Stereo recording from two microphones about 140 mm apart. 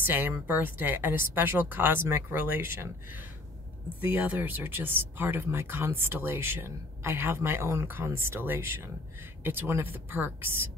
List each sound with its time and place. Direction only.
0.0 s speech: 15° right (ahead or behind)
4.0 s speech: 10° right (ahead or behind)